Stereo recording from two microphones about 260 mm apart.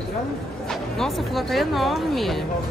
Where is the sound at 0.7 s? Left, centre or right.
Centre.